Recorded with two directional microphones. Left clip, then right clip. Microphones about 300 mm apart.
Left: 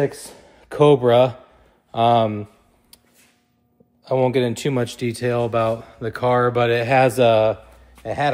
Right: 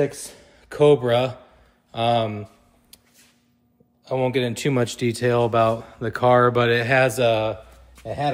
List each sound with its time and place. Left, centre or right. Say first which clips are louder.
0.0 s speech: left 1 dB; left
4.0 s speech: left 4 dB; left
4.6 s speech: even; centre
7.1 s speech: left 5 dB; left